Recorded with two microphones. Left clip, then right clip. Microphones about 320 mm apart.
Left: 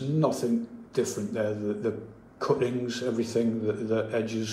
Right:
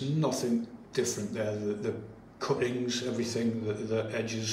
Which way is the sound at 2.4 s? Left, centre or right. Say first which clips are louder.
Left 4 dB; centre.